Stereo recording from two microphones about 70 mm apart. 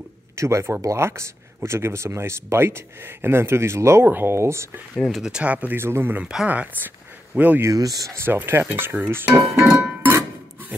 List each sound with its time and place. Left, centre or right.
0.4 s speech: right
5.0 s speech: centre
5.3 s speech: right
5.8 s speech: right
6.1 s speech: centre
7.6 s speech: right
8.1 s speech: right